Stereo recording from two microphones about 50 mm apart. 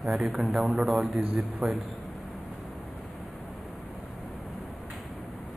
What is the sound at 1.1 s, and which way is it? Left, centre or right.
Speech, right.